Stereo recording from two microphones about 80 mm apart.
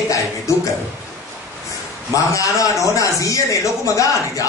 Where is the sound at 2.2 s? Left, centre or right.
Left.